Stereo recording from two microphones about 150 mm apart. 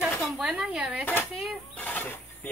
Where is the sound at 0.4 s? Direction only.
5° right (ahead or behind).